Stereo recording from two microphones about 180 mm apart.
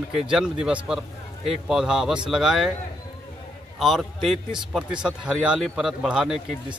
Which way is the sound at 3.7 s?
Centre (ahead or behind).